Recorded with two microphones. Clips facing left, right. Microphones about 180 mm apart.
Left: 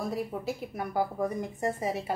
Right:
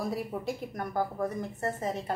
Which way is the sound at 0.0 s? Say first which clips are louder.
Even; centre (ahead or behind).